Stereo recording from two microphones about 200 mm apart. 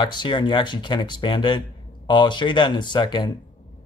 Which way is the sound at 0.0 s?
25° left (ahead or behind).